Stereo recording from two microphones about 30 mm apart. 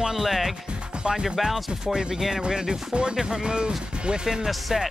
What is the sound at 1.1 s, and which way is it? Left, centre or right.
Speech, centre.